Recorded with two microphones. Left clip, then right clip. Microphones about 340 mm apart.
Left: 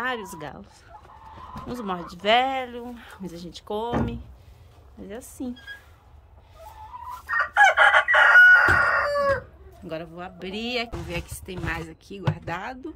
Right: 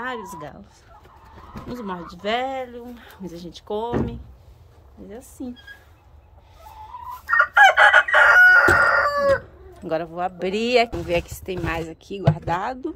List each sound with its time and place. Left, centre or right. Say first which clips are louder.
0.0 s speech: left 1 dB; centre
1.7 s a woman's voice: even; centre
5.0 s a woman's voice: left 1 dB; centre
7.2 s chicken: right 4 dB; right
9.8 s a woman's voice: right 10 dB; centre